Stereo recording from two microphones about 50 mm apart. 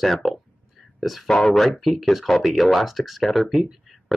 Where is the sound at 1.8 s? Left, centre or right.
Centre.